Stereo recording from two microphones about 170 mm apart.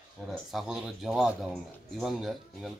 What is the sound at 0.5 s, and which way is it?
A man's voice, centre (ahead or behind).